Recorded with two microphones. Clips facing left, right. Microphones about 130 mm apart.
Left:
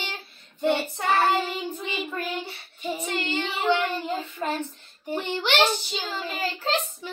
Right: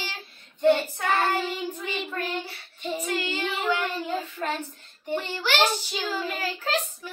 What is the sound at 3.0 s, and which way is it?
Speech, 30° left (ahead or behind).